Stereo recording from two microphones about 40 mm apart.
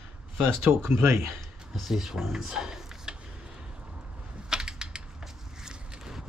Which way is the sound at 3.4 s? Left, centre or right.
Right.